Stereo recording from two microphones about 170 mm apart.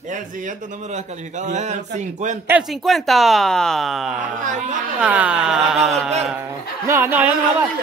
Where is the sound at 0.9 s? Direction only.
45° right (ahead or behind).